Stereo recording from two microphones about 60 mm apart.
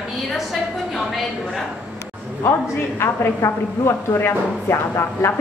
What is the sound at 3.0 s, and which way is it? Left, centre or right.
A woman's voice, left.